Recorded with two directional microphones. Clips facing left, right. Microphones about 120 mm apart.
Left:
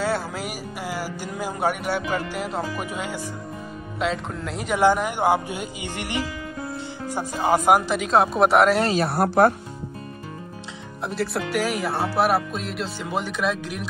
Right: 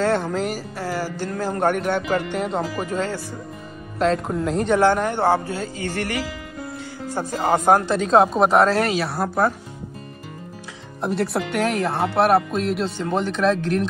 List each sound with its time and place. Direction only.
0.0 s speech: 5° left (ahead or behind)
4.0 s speech: centre (ahead or behind)
8.9 s speech: 55° left (ahead or behind)
11.0 s speech: centre (ahead or behind)